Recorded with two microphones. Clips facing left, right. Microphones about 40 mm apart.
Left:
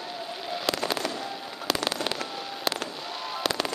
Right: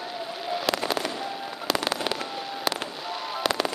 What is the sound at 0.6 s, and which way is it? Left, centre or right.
Fireworks, centre.